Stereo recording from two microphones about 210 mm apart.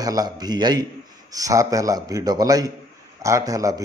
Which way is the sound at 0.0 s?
20° right (ahead or behind).